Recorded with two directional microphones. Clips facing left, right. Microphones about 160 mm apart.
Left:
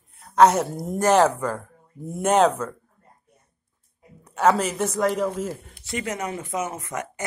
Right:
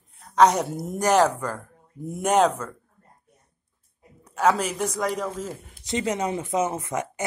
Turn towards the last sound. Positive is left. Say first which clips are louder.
# right 3 dB
turn(degrees=-20)  # may be behind; listen again after turning